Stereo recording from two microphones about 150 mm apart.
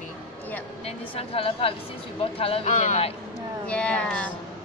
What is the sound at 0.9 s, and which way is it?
A woman's voice, 40° left (ahead or behind).